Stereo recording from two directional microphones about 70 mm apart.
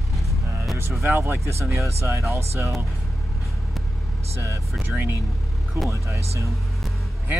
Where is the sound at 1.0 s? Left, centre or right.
Right.